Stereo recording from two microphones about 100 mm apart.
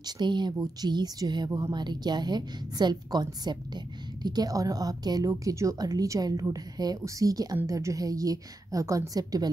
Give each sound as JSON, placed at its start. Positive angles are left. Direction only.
{"t": 0.0, "sound": "a woman's voice", "side_deg": -45}